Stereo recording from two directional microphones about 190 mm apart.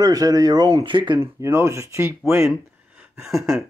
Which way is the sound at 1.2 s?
15° right (ahead or behind).